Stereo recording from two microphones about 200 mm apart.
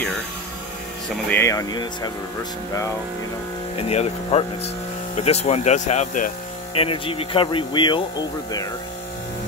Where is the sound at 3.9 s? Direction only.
30° left (ahead or behind).